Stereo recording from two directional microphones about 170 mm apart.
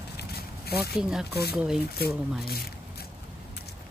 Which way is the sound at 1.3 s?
70° left (ahead or behind).